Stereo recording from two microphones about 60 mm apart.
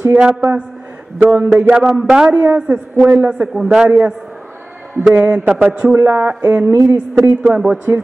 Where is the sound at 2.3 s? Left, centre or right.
Right.